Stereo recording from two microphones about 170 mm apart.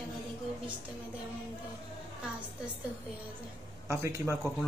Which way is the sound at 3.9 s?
15° right (ahead or behind).